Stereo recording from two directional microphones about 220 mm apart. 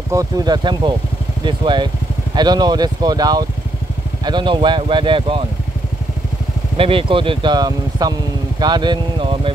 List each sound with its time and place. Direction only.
0.1 s speech: 15° right (ahead or behind)
6.8 s speech: 25° right (ahead or behind)